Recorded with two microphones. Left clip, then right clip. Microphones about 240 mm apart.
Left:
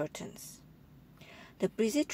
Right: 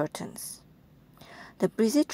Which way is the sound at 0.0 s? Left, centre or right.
Right.